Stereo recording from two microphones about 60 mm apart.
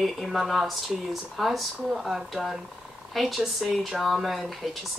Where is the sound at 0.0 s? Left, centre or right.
Centre.